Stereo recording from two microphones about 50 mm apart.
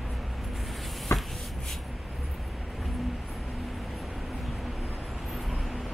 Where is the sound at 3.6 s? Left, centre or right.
Centre.